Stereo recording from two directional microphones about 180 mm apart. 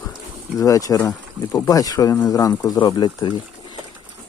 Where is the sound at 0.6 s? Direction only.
20° left (ahead or behind).